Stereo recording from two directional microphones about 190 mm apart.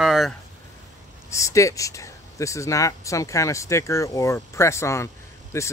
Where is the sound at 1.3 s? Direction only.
15° left (ahead or behind).